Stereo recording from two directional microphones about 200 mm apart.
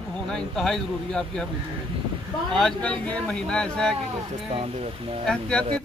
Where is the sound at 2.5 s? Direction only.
5° left (ahead or behind).